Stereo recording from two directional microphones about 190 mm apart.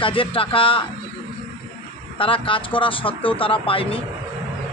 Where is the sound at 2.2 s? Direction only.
30° left (ahead or behind).